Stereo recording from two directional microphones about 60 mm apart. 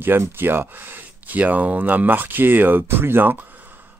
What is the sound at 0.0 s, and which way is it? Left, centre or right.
Speech, right.